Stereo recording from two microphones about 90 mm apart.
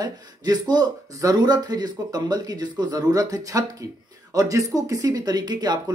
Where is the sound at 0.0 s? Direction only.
50° right (ahead or behind).